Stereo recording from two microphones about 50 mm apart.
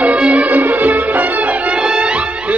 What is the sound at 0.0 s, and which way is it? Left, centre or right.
Music, right.